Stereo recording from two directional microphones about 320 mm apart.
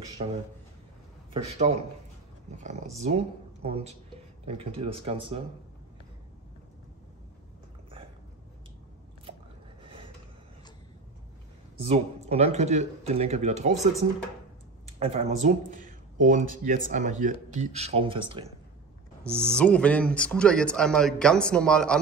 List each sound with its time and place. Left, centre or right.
0.2 s speech: right
3.0 s speech: centre
9.8 s a sound: centre
11.8 s speech: centre
14.9 s speech: centre
19.2 s speech: centre